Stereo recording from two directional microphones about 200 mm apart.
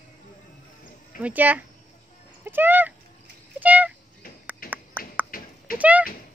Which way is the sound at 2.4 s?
10° right (ahead or behind).